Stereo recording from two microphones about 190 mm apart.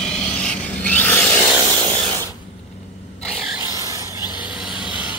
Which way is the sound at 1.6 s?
25° right (ahead or behind).